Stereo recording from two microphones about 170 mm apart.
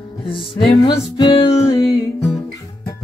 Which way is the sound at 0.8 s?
25° left (ahead or behind).